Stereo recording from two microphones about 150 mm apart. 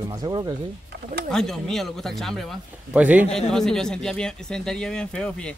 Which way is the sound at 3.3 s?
5° left (ahead or behind).